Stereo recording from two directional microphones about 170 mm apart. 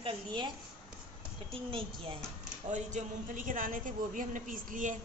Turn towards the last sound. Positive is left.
turn(degrees=-50)  # may be behind; listen again after turning